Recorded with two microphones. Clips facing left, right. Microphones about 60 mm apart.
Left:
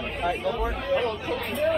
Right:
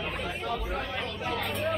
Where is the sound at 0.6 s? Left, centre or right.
Left.